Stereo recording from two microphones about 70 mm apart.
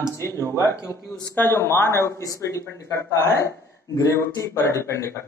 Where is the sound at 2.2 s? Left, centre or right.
Left.